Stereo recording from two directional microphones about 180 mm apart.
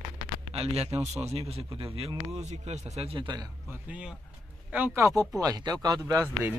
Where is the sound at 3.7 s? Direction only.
5° right (ahead or behind).